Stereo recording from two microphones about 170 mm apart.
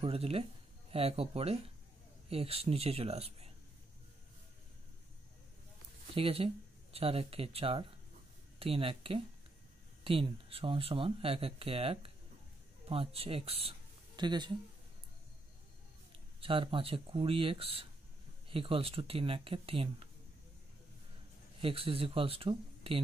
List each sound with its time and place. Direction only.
0.0 s speech: 35° right (ahead or behind)
6.1 s speech: 35° right (ahead or behind)
16.3 s speech: 30° right (ahead or behind)
21.5 s speech: 35° right (ahead or behind)